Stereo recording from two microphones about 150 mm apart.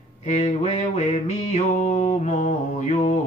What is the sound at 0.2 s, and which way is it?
Music, 50° left (ahead or behind).